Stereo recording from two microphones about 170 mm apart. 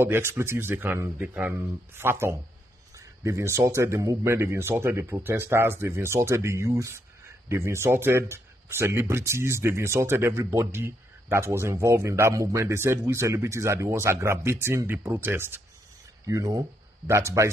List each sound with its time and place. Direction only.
0.0 s speech: 15° right (ahead or behind)